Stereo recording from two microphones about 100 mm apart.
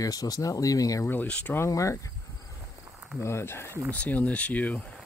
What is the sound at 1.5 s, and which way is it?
Speech, 30° left (ahead or behind).